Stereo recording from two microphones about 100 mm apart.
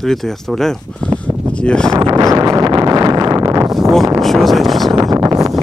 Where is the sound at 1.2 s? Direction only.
10° left (ahead or behind).